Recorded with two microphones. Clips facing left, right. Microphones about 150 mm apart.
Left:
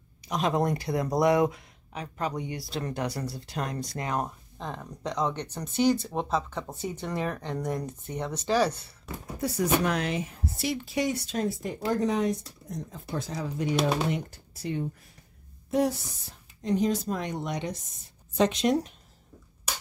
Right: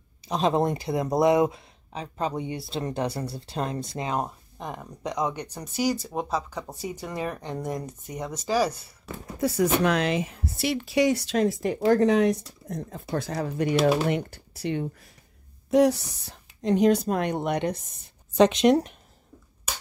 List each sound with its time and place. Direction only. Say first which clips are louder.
0.3 s speech: right 3 dB; 25° right (ahead or behind); by 9.1 s 10° right (ahead or behind)
9.4 s a woman's voice: right 3 dB; 90° right; by 17.8 s 60° right (ahead or behind)
18.4 s a woman's voice: right 6 dB; 85° right; by 18.9 s 70° right (ahead or behind)